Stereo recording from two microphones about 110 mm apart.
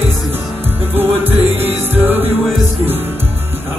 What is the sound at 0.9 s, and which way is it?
Music, 20° right (ahead or behind).